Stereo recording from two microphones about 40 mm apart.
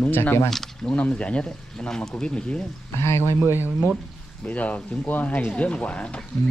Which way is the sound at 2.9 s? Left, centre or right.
Left.